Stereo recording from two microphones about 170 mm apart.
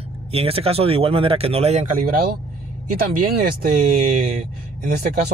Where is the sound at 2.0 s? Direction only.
60° right (ahead or behind).